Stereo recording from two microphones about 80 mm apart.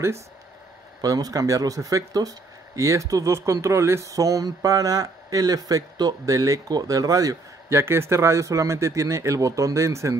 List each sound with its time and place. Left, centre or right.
1.0 s speech: right
7.7 s speech: right